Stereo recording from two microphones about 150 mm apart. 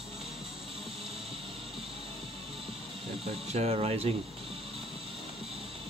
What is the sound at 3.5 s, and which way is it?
Speech, 45° right (ahead or behind).